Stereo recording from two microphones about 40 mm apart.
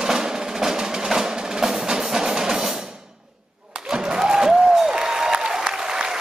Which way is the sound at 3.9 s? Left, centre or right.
Right.